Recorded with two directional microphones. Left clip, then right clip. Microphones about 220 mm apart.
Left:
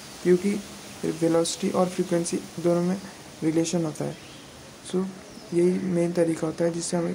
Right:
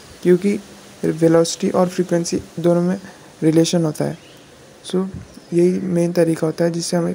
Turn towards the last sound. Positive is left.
turn(degrees=-25)  # may be behind; listen again after turning